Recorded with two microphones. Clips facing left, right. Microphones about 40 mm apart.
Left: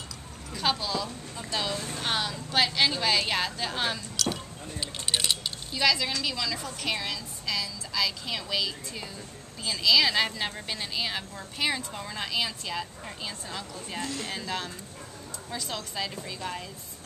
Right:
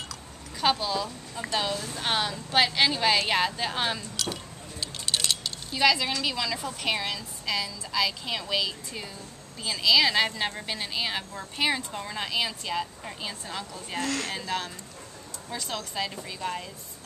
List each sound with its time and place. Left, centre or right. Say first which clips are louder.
0.6 s a woman's voice: right 3 dB; centre
4.7 s a sound: even; centre
5.7 s a woman's voice: right 3 dB; centre
14.0 s speech: right 6 dB; right
14.3 s a woman's voice: right 2 dB; centre
15.7 s speech: right 3 dB; centre